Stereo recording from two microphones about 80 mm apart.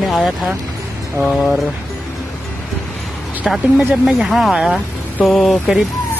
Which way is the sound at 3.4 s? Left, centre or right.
Centre.